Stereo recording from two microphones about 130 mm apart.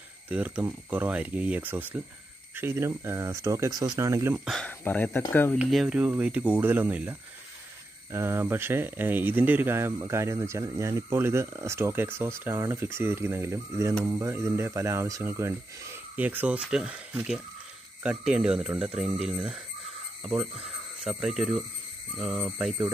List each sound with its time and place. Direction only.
0.3 s speech: 10° right (ahead or behind)
4.5 s speech: 5° left (ahead or behind)
5.7 s speech: 5° right (ahead or behind)